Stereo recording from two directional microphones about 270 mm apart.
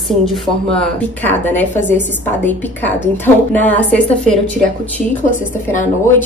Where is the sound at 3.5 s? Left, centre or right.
Centre.